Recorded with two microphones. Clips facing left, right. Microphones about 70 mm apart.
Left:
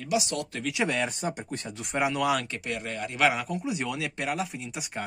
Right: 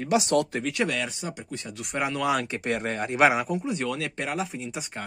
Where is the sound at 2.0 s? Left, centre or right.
Centre.